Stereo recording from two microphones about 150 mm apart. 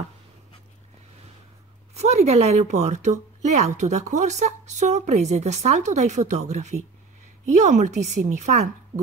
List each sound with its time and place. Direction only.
2.0 s speech: 45° right (ahead or behind)